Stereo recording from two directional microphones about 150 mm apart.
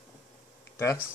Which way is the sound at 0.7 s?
15° left (ahead or behind).